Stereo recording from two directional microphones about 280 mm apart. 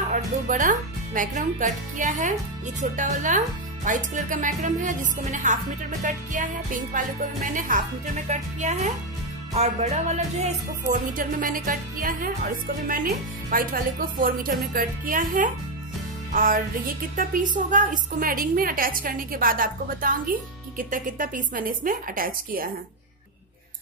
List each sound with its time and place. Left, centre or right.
0.1 s speech: right
2.8 s music: right